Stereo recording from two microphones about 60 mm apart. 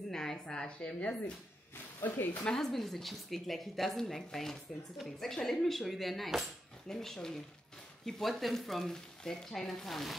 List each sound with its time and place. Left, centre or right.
0.1 s a woman's voice: centre
2.0 s speech: left
2.4 s a woman's voice: centre